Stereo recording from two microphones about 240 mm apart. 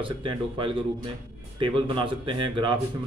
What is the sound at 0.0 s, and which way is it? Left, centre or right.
Speech, right.